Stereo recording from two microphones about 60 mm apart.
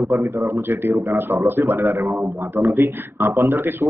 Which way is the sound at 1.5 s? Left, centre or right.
Right.